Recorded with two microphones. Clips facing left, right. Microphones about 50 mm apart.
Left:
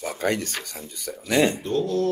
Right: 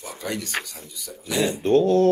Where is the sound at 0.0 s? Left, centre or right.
Left.